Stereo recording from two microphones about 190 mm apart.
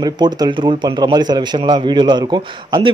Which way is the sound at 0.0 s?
20° right (ahead or behind).